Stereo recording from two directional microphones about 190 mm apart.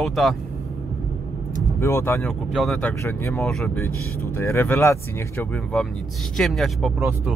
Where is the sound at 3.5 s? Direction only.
5° left (ahead or behind).